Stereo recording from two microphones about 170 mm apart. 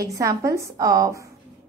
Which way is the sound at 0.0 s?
20° right (ahead or behind).